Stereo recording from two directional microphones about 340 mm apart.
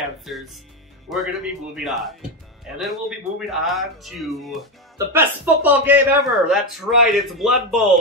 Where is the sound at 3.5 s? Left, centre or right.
Centre.